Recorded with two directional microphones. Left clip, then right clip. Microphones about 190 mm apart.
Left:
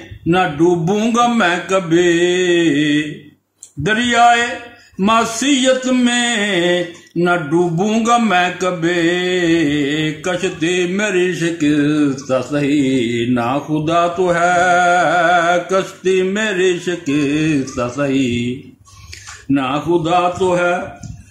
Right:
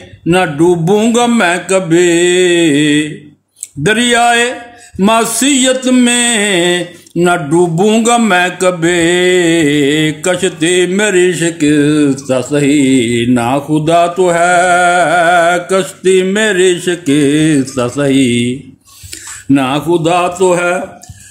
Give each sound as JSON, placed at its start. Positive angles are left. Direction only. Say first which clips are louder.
{"t": 0.3, "sound": "mantra", "louder": "right 4 dB", "side_deg": -45}
{"t": 5.0, "sound": "music", "louder": "right 4 dB", "side_deg": -45}
{"t": 19.5, "sound": "mantra", "louder": "right 5 dB", "side_deg": -45}